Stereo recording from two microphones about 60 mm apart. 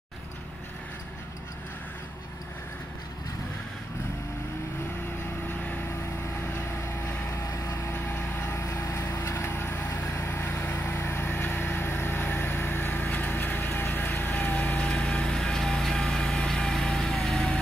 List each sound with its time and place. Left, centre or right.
5.5 s vehicle: left
6.5 s vehicle: left
7.4 s vehicle: left
7.9 s vehicle: left
8.5 s vehicle: left
14.9 s light engine: centre